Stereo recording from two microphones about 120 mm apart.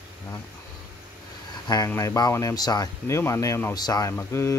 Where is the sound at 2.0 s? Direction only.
30° left (ahead or behind).